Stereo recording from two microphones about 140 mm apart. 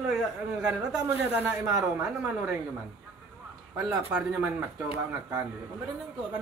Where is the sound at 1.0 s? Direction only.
20° right (ahead or behind).